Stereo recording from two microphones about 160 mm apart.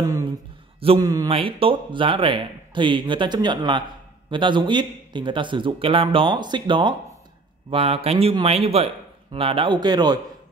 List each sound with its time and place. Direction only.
0.7 s a man's voice: 35° right (ahead or behind)
1.0 s speech: 20° right (ahead or behind)
1.3 s a man's voice: 35° right (ahead or behind)